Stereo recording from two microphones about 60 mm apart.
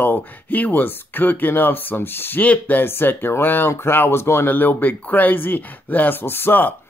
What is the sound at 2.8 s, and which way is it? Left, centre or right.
Speech, left.